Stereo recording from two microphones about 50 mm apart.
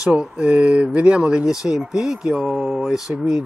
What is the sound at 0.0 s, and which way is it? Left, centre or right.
Speech, centre.